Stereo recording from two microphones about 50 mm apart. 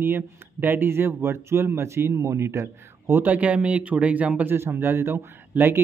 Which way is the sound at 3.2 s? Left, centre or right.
Right.